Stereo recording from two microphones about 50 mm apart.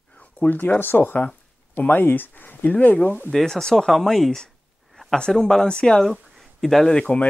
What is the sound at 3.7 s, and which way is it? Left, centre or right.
Speech, centre.